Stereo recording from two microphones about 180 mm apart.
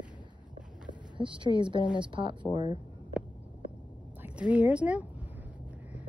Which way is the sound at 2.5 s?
20° left (ahead or behind).